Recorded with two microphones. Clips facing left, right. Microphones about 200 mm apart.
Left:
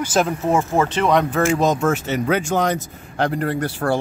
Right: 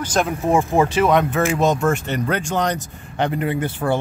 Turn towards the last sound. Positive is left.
turn(degrees=0)  # may be behind; listen again after turning